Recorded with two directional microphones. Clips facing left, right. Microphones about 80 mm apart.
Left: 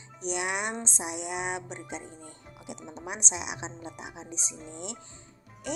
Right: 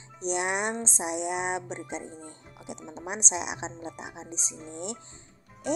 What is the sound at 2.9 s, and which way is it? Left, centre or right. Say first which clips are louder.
A woman's voice: right 4 dB; right.